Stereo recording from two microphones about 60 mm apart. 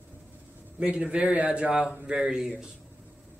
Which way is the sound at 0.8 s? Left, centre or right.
Centre.